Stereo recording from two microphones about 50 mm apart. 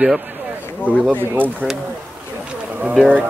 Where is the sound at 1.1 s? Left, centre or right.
Right.